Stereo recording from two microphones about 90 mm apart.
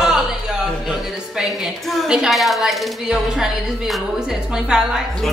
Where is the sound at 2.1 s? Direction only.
5° right (ahead or behind).